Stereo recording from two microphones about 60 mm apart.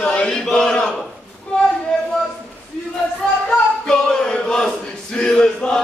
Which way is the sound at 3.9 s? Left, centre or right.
Centre.